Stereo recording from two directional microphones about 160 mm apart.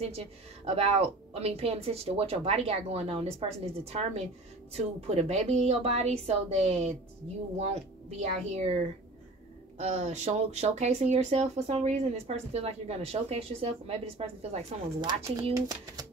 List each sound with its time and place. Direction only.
0.0 s a woman's voice: 40° right (ahead or behind)
9.8 s a woman's voice: 45° right (ahead or behind)